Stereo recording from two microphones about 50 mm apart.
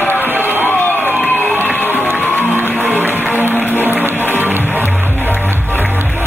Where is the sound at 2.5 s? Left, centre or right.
Right.